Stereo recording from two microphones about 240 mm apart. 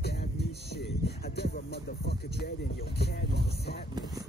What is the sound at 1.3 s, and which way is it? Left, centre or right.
Music, left.